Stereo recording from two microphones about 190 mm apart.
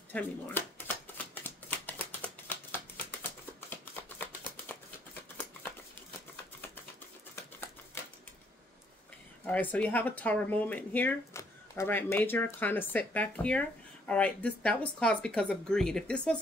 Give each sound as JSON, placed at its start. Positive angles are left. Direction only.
{"t": 0.1, "sound": "shuffling cards", "side_deg": 10}
{"t": 3.7, "sound": "a sound", "side_deg": 10}
{"t": 9.5, "sound": "speech", "side_deg": 10}